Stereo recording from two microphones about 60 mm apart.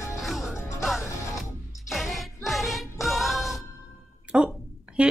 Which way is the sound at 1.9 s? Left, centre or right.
Centre.